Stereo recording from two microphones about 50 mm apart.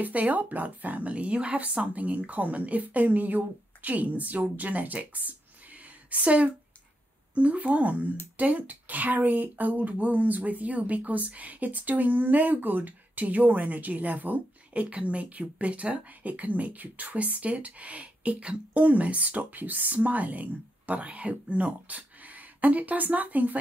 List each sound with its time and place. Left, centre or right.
0.0 s a woman's voice: right